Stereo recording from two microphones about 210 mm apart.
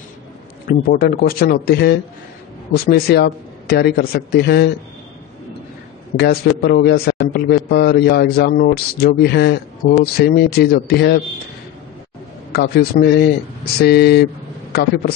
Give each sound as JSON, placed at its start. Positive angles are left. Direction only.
{"t": 0.7, "sound": "a man's voice", "side_deg": 45}
{"t": 6.1, "sound": "a man's voice", "side_deg": 50}
{"t": 12.5, "sound": "a man's voice", "side_deg": 50}